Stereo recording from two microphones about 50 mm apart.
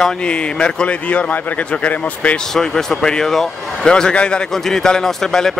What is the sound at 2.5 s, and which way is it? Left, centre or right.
Speech, centre.